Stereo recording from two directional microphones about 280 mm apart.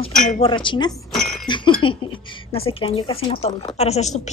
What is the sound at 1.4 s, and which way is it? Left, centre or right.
Chink, centre.